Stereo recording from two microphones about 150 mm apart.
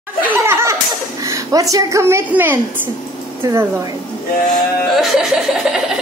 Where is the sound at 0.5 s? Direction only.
15° right (ahead or behind).